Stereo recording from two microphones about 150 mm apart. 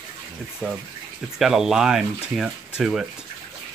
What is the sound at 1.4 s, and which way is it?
Speech, 5° right (ahead or behind).